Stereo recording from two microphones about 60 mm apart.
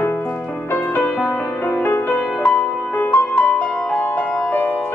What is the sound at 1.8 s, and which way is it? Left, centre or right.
Music, left.